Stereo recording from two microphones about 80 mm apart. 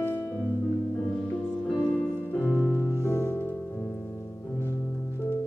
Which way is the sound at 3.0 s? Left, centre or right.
Left.